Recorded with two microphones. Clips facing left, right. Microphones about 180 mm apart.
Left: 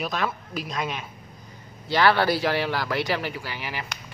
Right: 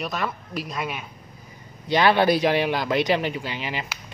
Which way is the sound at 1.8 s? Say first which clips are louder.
Right 2 dB; 20° right (ahead or behind).